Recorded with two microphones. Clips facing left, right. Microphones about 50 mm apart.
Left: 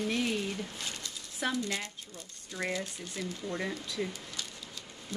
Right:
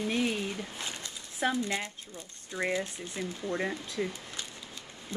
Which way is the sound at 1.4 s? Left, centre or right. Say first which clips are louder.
Right 3 dB; right.